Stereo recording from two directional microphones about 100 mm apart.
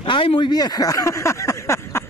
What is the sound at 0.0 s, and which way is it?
Speech, 60° left (ahead or behind).